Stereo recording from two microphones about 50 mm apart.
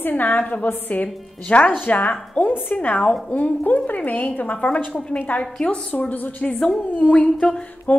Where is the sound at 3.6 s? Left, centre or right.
Left.